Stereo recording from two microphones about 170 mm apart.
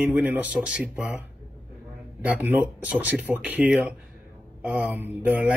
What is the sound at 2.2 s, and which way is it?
Speech, 10° right (ahead or behind).